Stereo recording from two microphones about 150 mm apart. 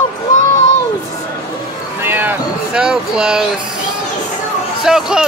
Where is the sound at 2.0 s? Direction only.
15° right (ahead or behind).